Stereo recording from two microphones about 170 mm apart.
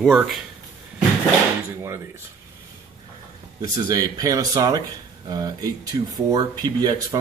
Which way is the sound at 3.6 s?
20° right (ahead or behind).